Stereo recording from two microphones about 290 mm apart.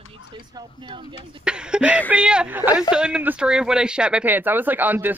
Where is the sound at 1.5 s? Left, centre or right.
Centre.